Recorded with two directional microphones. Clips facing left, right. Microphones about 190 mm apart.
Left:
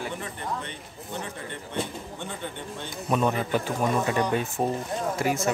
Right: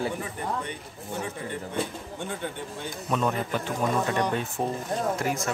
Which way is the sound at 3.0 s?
10° left (ahead or behind).